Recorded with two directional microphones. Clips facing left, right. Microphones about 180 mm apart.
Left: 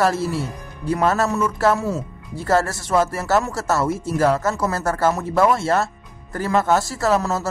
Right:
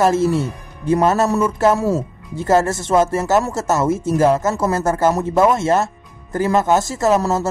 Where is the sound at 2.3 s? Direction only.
20° right (ahead or behind).